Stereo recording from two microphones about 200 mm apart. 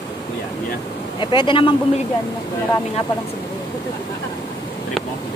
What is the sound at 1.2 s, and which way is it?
Speech, 25° left (ahead or behind).